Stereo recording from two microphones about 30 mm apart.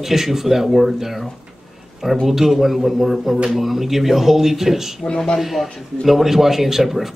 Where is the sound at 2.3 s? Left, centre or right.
Centre.